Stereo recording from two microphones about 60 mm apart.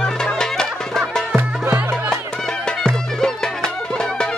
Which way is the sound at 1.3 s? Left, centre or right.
Right.